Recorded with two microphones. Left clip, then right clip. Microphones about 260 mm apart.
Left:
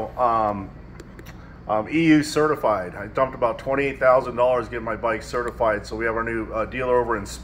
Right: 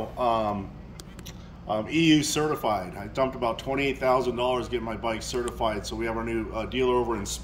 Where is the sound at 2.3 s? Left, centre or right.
Left.